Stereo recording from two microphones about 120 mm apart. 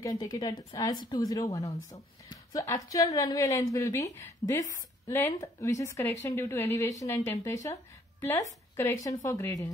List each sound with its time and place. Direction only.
0.0 s speech: 35° left (ahead or behind)